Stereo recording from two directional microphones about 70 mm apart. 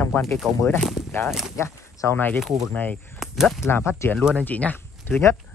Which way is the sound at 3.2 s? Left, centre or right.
Centre.